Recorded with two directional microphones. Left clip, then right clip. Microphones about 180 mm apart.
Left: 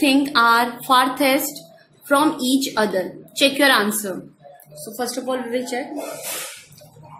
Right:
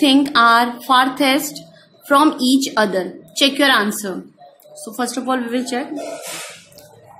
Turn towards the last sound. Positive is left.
turn(degrees=-35)  # may be behind; listen again after turning